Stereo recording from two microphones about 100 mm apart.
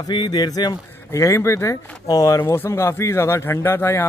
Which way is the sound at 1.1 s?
30° left (ahead or behind).